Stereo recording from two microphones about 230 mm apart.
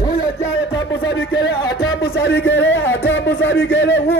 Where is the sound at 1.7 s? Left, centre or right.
Left.